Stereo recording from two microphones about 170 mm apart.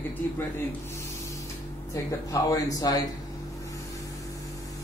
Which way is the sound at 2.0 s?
20° left (ahead or behind).